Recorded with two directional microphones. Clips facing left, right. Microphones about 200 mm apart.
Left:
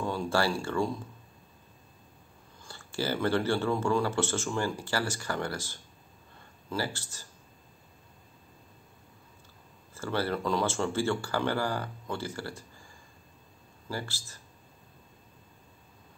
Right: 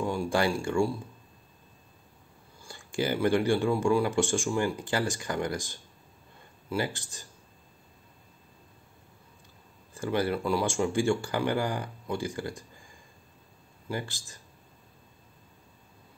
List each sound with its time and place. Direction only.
0.0 s speech: 15° right (ahead or behind)
2.6 s speech: 15° right (ahead or behind)
9.9 s speech: 15° right (ahead or behind)
13.8 s speech: 15° right (ahead or behind)